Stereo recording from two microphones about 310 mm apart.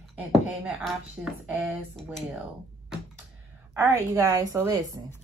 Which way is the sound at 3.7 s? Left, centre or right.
Centre.